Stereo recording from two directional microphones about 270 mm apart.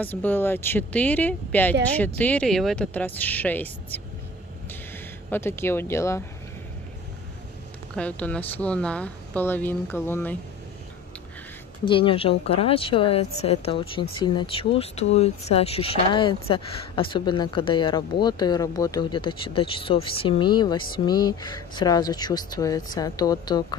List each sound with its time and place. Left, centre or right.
0.0 s speech: centre
4.6 s a sound: centre
7.9 s speech: centre
11.8 s speech: centre